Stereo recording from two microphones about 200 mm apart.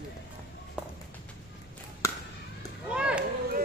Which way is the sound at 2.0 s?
15° left (ahead or behind).